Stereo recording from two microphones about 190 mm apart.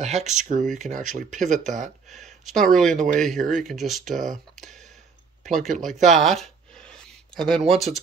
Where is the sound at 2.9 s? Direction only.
40° right (ahead or behind).